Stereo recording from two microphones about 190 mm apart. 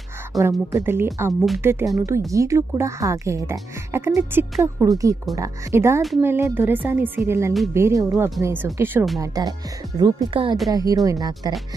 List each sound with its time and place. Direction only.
0.4 s speech: 15° right (ahead or behind)